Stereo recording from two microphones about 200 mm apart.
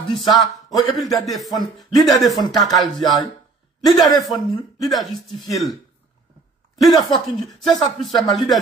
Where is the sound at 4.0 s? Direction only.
Centre (ahead or behind).